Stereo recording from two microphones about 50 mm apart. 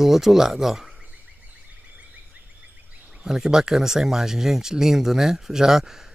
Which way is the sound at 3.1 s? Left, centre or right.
Centre.